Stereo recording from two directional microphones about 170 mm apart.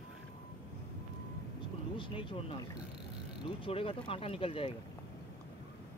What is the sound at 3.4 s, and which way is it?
Speech, 30° left (ahead or behind).